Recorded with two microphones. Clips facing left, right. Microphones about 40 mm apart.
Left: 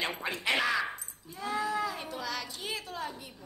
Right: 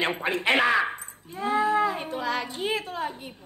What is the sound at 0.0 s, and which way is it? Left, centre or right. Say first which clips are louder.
Speech: right 7 dB; right.